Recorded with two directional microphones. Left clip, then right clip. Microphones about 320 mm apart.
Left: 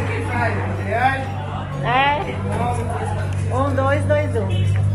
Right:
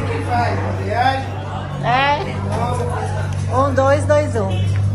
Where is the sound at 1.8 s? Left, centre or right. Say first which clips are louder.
Right 1 dB; centre.